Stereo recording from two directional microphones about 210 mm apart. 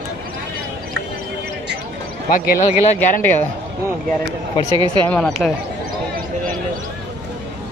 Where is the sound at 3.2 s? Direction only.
10° left (ahead or behind).